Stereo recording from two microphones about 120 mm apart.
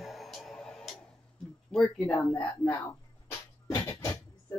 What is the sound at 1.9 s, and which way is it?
Speech, 15° left (ahead or behind).